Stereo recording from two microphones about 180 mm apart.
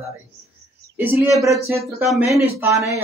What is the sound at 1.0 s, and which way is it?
Speech, 15° right (ahead or behind).